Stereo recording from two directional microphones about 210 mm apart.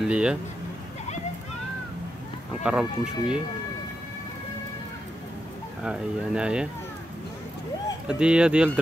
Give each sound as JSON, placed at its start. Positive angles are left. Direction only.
{"t": 0.0, "sound": "speech", "side_deg": -5}
{"t": 2.6, "sound": "speech", "side_deg": -5}
{"t": 5.9, "sound": "speech", "side_deg": -5}
{"t": 8.1, "sound": "speech", "side_deg": -5}